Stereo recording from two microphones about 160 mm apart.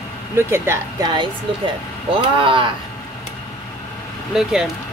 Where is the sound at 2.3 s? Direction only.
30° right (ahead or behind).